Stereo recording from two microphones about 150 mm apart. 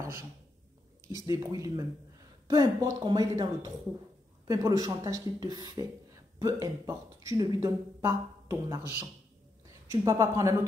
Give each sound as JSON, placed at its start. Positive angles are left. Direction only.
{"t": 1.0, "sound": "speech", "side_deg": -20}
{"t": 9.8, "sound": "speech", "side_deg": -20}